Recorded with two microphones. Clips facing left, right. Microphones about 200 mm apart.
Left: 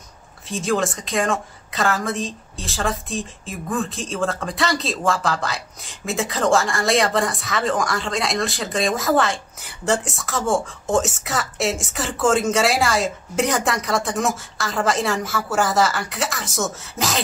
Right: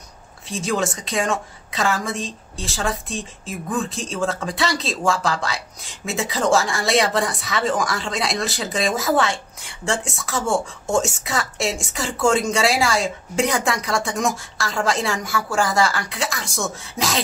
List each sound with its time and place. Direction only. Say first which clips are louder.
0.5 s a woman's voice: left 1 dB; centre (ahead or behind)